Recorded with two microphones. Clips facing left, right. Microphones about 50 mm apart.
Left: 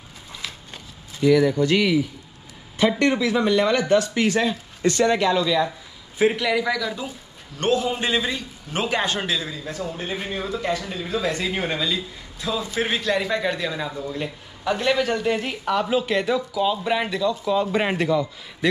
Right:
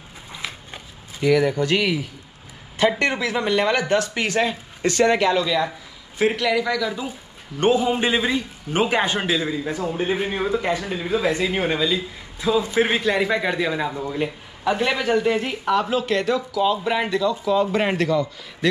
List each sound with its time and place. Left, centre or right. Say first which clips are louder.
0.3 s walk: right 3 dB; centre
2.8 s speech: even; right
6.3 s a man's voice: right 1 dB; centre
6.6 s speech: right 1 dB; centre
7.5 s a man's voice: right 3 dB; centre
16.1 s a man's voice: right 1 dB; centre
16.3 s speech: right 2 dB; centre
17.9 s a man's voice: right 1 dB; centre